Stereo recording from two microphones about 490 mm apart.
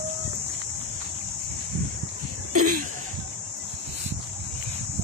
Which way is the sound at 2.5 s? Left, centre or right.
Right.